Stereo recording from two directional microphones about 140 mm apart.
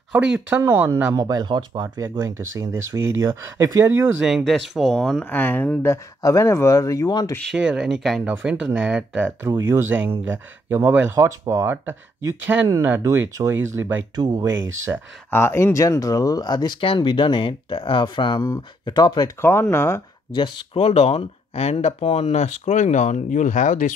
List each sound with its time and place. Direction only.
0.1 s speech: 5° right (ahead or behind)
1.2 s speech: 30° right (ahead or behind)
4.2 s speech: 5° right (ahead or behind); by 7.3 s 25° left (ahead or behind)
7.5 s speech: 5° right (ahead or behind)
9.5 s speech: 20° right (ahead or behind)
14.1 s speech: 25° right (ahead or behind)
15.3 s speech: 20° left (ahead or behind)
19.4 s speech: 20° left (ahead or behind)
20.2 s speech: 35° left (ahead or behind); by 23.9 s 65° left (ahead or behind)